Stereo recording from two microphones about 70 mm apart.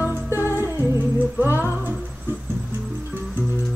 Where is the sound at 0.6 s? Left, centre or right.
Right.